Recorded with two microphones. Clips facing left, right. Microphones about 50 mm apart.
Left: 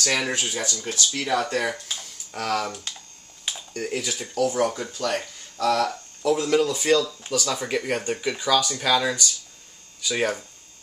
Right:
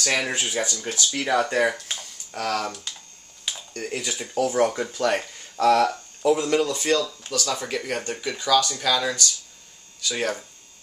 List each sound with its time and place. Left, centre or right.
0.0 s speech: centre
2.0 s typing: centre
3.4 s speech: centre
4.4 s speech: centre
6.3 s speech: centre